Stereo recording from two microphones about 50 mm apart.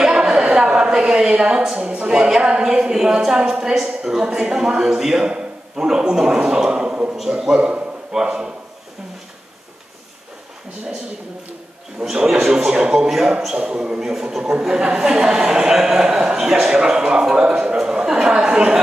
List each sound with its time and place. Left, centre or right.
0.0 s a sound: centre
2.0 s a man's voice: centre
12.0 s a man's voice: centre